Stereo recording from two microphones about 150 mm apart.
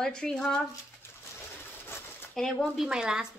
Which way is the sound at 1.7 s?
15° left (ahead or behind).